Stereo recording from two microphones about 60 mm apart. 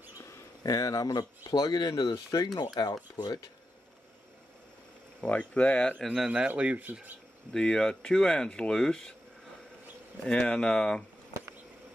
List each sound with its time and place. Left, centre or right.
0.2 s speech: left
5.2 s speech: centre
6.1 s speech: centre
6.5 s speech: right
7.5 s speech: centre
10.2 s speech: centre